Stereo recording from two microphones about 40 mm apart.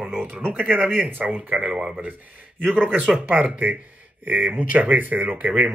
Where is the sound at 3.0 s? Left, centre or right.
Right.